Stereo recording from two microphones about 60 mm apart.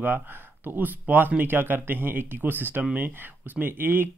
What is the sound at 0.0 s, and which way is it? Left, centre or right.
Speech, right.